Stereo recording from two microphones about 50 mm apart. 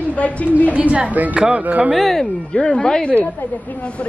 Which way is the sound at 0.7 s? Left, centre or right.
Right.